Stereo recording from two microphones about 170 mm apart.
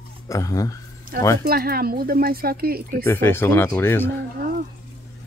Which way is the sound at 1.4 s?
65° right (ahead or behind).